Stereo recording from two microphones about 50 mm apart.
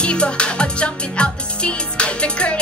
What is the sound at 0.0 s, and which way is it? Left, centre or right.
Music, left.